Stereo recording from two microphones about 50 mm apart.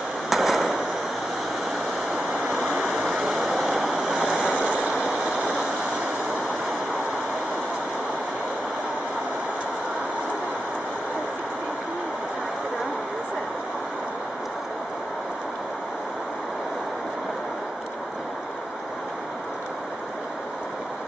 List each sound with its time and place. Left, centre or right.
0.3 s fireworks: centre
2.3 s stream: centre
2.6 s a sound: centre
4.9 s vehicle: centre